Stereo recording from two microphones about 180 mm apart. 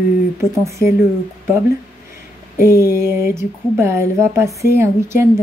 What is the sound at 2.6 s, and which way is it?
Speech, 15° right (ahead or behind).